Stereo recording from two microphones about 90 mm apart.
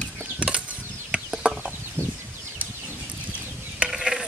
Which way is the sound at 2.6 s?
20° right (ahead or behind).